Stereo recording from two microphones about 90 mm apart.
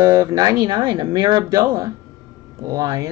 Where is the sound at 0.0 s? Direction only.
35° right (ahead or behind).